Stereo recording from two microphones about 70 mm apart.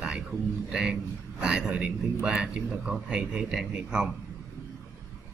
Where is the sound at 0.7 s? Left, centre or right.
Centre.